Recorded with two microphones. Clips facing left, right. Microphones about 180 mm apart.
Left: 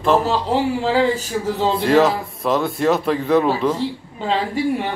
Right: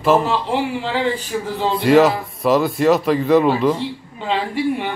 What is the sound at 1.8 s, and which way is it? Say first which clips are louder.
Speech: right 4 dB; centre (ahead or behind).